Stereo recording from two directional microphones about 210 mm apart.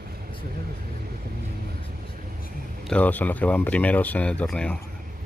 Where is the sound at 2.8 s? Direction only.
5° left (ahead or behind).